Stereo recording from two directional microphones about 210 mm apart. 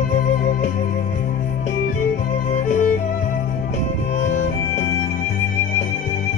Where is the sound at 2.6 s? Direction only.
35° left (ahead or behind).